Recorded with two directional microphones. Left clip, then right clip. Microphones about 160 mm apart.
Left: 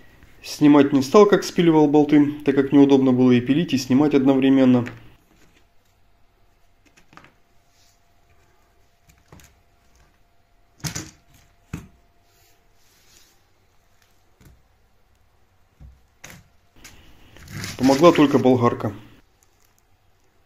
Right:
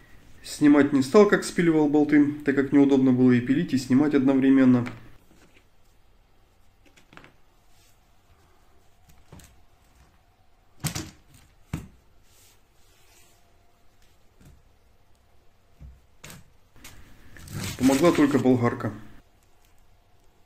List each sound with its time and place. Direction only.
0.4 s speech: 20° left (ahead or behind)
6.8 s a sound: 30° right (ahead or behind)
18.0 s speech: 20° left (ahead or behind)